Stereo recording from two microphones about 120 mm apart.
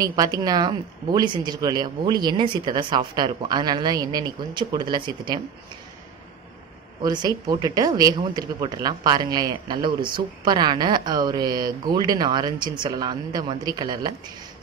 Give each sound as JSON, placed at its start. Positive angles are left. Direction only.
{"t": 0.0, "sound": "speech", "side_deg": -30}
{"t": 7.0, "sound": "speech", "side_deg": -35}